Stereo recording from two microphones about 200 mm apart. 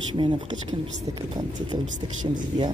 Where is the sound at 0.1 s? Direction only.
25° right (ahead or behind).